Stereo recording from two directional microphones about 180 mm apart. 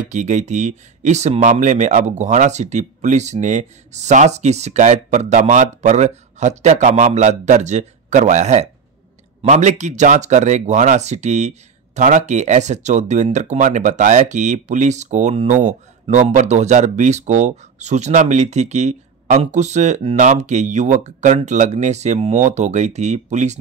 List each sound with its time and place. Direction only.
0.1 s speech: 40° right (ahead or behind)